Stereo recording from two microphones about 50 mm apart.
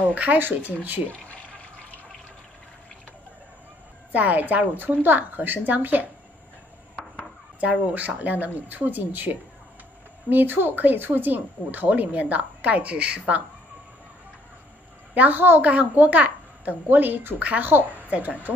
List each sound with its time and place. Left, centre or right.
0.1 s speech: right
4.1 s speech: right
7.6 s speech: right
15.1 s speech: right
15.6 s speech: right
17.4 s speech: right
17.6 s speech: right